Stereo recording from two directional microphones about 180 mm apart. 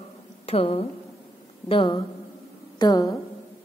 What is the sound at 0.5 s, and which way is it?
A woman's voice, 35° left (ahead or behind).